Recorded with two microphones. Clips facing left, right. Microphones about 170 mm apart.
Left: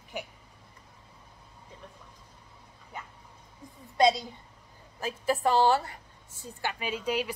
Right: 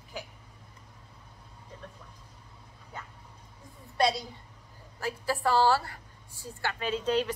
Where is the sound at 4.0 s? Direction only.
20° left (ahead or behind).